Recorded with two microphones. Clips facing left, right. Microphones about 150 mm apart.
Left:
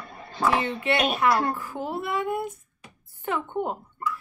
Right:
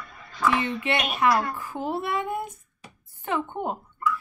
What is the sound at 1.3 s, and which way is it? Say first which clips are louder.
Speech: right 2 dB; 30° left (ahead or behind).